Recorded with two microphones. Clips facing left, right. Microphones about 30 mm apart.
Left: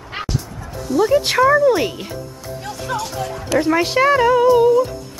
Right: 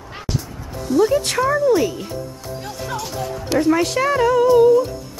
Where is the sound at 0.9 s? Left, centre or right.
Centre.